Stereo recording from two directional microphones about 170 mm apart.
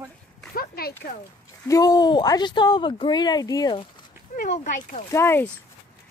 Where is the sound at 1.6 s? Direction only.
20° left (ahead or behind).